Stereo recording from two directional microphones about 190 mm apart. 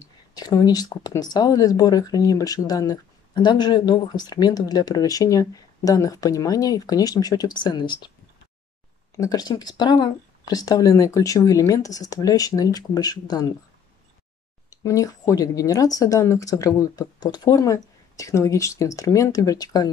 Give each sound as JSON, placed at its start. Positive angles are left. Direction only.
{"t": 0.3, "sound": "speech", "side_deg": 20}
{"t": 9.1, "sound": "speech", "side_deg": 20}
{"t": 14.7, "sound": "speech", "side_deg": 15}